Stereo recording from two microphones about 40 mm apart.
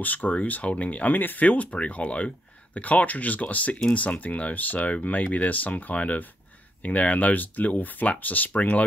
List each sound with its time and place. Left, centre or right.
0.0 s speech: left
0.3 s speech: left